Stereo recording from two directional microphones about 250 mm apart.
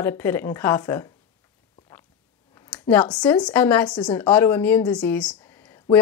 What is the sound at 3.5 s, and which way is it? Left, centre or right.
Speech, centre.